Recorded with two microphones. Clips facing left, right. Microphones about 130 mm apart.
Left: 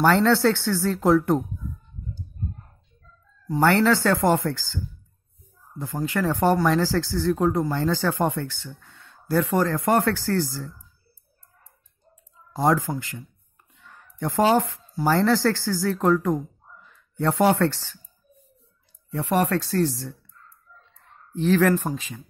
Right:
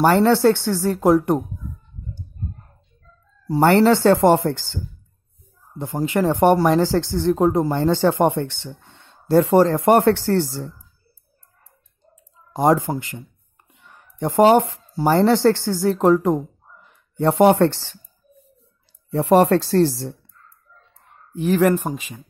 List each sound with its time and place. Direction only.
0.0 s speech: 15° right (ahead or behind)
3.6 s speech: 20° right (ahead or behind)
12.5 s speech: 20° right (ahead or behind)
19.0 s speech: 30° right (ahead or behind)
21.3 s speech: 15° right (ahead or behind)